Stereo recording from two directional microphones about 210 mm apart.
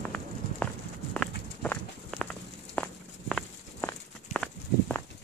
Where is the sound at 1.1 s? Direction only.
5° left (ahead or behind).